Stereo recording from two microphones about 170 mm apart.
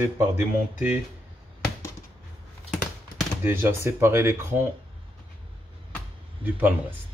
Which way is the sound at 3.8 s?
15° right (ahead or behind).